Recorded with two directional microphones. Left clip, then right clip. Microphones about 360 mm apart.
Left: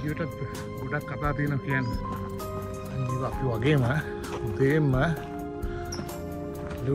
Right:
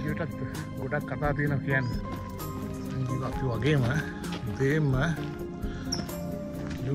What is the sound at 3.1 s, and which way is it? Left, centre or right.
Speech, centre.